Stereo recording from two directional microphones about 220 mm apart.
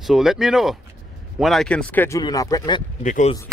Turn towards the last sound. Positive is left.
turn(degrees=30)  # may be behind; listen again after turning